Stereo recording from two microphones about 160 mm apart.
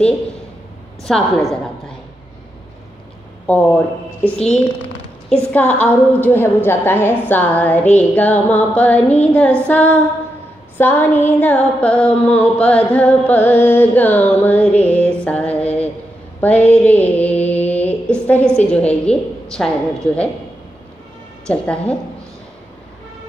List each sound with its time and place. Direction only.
1.0 s speech: centre (ahead or behind)
3.4 s a woman's voice: 10° left (ahead or behind)
5.3 s a woman's voice: 10° left (ahead or behind)
15.2 s a sound: 10° left (ahead or behind)
16.3 s mantra: 10° left (ahead or behind)
18.6 s a woman's voice: 10° left (ahead or behind)
21.5 s a woman's voice: 10° left (ahead or behind)